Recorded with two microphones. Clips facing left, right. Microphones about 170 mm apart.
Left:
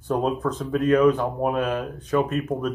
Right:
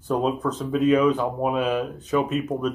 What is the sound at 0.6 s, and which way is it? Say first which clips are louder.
Speech: left 1 dB; 10° right (ahead or behind).